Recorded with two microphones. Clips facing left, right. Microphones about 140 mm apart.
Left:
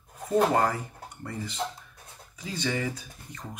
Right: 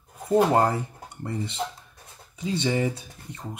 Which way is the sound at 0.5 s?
25° right (ahead or behind).